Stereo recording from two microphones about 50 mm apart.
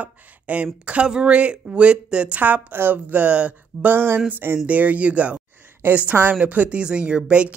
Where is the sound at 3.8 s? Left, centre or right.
Right.